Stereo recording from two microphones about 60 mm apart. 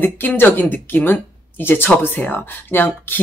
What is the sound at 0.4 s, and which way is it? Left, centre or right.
Speech, left.